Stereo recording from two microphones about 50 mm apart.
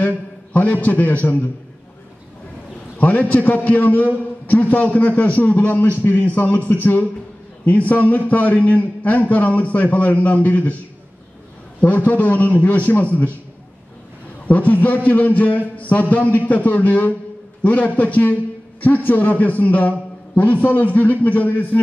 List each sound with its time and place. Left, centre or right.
0.5 s a sound: left
0.8 s a man's voice: left
3.0 s a man's voice: left
11.8 s a man's voice: left
14.5 s a man's voice: left